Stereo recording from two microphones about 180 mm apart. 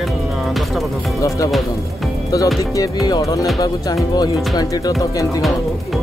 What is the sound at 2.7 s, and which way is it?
Speech, 20° left (ahead or behind).